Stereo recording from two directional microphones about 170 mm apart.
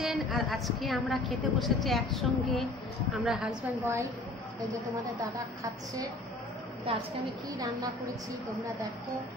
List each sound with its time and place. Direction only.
0.0 s a woman's voice: centre (ahead or behind)
6.9 s a woman's voice: 35° right (ahead or behind)
7.5 s a woman's voice: 20° right (ahead or behind)